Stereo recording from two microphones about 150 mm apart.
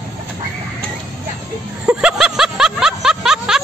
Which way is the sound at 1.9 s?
5° right (ahead or behind).